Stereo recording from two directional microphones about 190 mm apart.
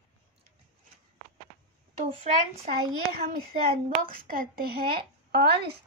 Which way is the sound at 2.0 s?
35° right (ahead or behind).